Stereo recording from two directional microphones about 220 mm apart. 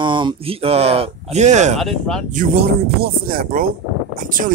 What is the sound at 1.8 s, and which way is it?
Speech, centre (ahead or behind).